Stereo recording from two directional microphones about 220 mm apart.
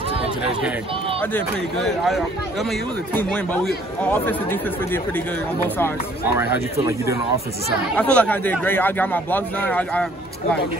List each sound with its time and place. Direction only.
1.3 s speech: centre (ahead or behind)
6.2 s speech: 10° right (ahead or behind)
8.0 s speech: 5° left (ahead or behind)